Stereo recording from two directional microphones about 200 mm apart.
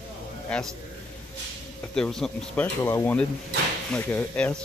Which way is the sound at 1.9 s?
5° left (ahead or behind).